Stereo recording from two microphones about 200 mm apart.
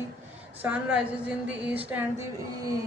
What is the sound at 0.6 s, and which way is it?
A woman's voice, 5° right (ahead or behind).